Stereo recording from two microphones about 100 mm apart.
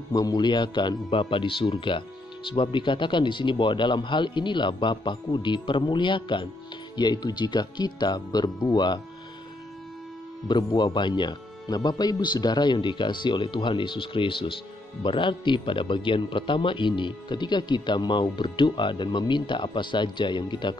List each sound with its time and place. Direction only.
0.1 s speech: 40° left (ahead or behind)
10.5 s speech: 50° left (ahead or behind)